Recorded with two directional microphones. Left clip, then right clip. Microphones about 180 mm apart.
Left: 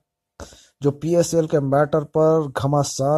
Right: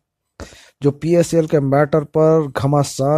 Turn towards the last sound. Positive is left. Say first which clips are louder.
# right 3 dB
turn(degrees=-30)  # may be behind; listen again after turning